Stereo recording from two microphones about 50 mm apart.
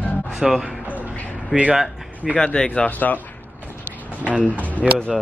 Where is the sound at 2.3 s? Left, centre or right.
Left.